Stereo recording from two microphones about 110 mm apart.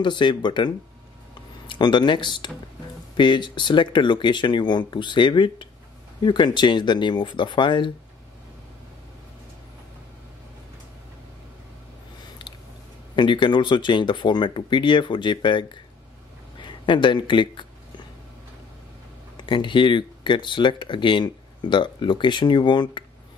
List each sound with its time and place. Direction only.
0.0 s speech: 45° left (ahead or behind)
13.1 s speech: 45° left (ahead or behind)
16.6 s a sound: 45° left (ahead or behind)
19.3 s speech: 45° left (ahead or behind)